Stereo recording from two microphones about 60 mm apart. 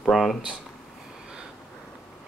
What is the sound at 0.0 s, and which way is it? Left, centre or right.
Speech, centre.